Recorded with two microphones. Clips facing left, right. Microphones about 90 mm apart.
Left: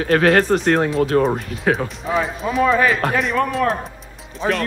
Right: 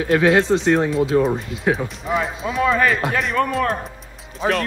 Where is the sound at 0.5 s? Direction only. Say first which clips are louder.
Even; 65° left (ahead or behind).